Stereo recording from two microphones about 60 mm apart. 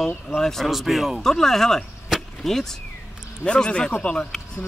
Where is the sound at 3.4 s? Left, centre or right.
Centre.